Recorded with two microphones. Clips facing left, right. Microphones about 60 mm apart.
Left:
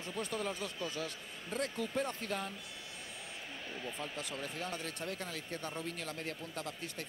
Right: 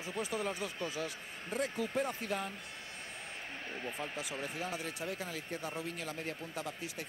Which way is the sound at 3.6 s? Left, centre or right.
Right.